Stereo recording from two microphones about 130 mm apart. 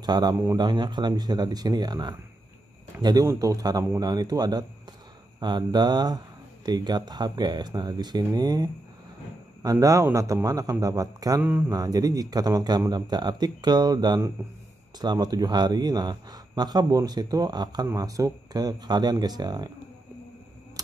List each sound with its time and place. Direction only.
0.0 s a man's voice: 35° right (ahead or behind)